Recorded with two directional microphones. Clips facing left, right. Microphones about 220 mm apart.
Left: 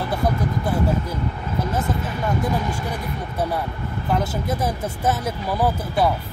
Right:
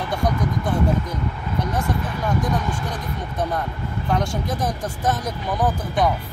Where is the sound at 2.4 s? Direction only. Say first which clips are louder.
Left 1 dB; 10° left (ahead or behind).